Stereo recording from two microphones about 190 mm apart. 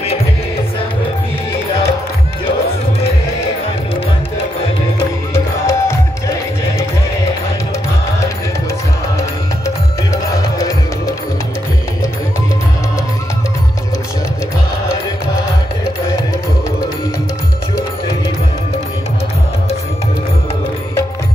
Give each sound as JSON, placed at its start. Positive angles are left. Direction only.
{"t": 4.9, "sound": "music", "side_deg": 15}
{"t": 10.1, "sound": "music", "side_deg": 15}